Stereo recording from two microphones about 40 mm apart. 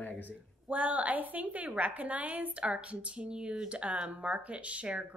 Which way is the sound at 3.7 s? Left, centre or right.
Right.